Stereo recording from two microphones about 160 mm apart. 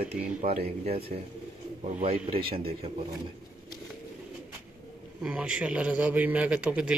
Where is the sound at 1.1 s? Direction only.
45° right (ahead or behind).